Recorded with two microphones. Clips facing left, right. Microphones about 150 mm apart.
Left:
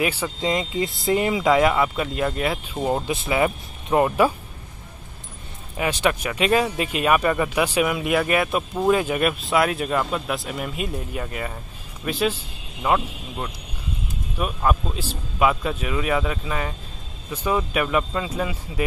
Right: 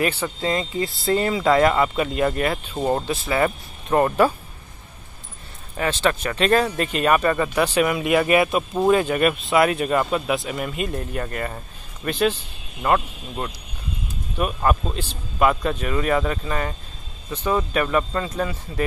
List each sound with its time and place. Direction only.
0.0 s speech: 10° left (ahead or behind)
5.8 s speech: 10° left (ahead or behind)